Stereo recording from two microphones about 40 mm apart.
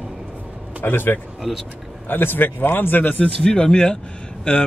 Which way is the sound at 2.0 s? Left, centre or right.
Left.